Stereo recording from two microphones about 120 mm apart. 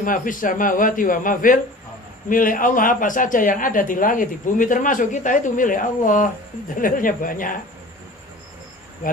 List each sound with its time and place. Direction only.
0.0 s speech: 90° left